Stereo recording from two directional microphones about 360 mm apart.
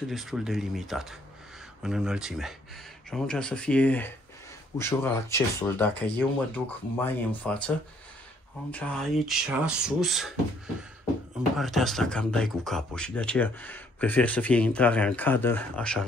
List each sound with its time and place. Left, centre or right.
0.1 s speech: centre
8.7 s speech: centre
11.5 s speech: centre